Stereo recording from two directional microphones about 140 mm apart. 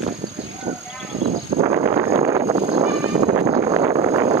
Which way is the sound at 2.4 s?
45° right (ahead or behind).